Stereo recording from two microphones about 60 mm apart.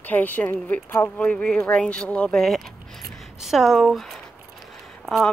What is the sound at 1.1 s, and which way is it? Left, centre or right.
Speech, centre.